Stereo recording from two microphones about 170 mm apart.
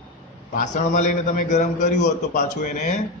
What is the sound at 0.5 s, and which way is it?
A man's voice, 45° left (ahead or behind).